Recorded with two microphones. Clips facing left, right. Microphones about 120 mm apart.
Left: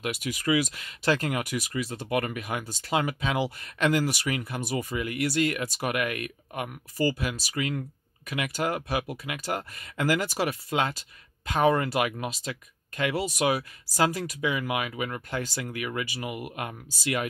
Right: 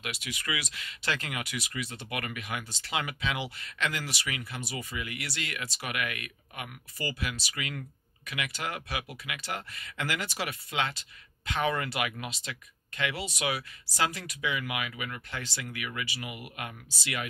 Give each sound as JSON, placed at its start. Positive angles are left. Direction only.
{"t": 0.0, "sound": "speech", "side_deg": 45}